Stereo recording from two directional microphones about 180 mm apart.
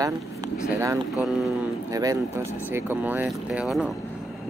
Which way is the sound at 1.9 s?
20° right (ahead or behind).